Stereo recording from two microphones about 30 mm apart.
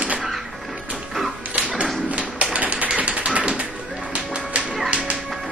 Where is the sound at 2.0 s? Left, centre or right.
Right.